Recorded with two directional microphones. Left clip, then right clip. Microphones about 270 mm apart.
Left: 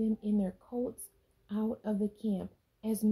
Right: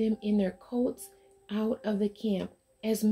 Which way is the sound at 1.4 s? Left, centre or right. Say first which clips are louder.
Right 5 dB; centre.